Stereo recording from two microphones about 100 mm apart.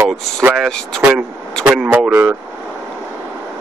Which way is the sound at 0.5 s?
5° left (ahead or behind).